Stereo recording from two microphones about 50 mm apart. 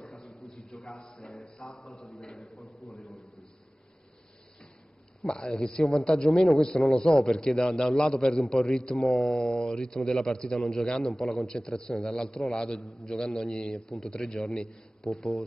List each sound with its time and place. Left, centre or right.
0.0 s a sound: centre
0.9 s speech: centre
1.8 s a man's voice: centre
5.2 s a man's voice: centre
13.7 s a man's voice: centre